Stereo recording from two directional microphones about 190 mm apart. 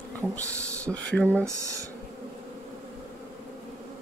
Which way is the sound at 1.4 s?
15° right (ahead or behind).